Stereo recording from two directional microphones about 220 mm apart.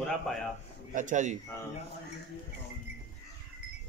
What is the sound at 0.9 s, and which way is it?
Speech, 35° right (ahead or behind).